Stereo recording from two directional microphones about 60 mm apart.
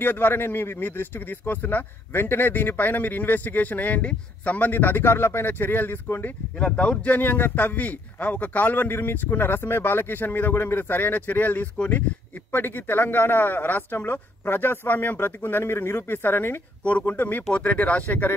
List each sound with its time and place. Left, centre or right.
0.0 s speech: left
6.6 s speech: left